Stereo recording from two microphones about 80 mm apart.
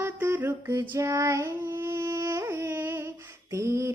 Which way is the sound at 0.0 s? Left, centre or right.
Right.